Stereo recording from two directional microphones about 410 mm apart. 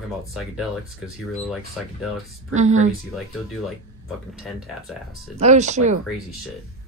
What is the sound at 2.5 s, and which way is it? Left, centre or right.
Speech, centre.